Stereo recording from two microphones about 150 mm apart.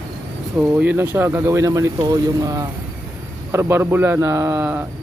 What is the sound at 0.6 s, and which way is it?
Speech, 10° right (ahead or behind).